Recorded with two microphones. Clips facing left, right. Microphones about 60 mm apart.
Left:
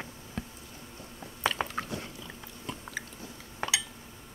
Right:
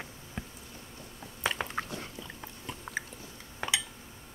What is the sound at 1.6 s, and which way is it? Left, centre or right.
Chewing, centre.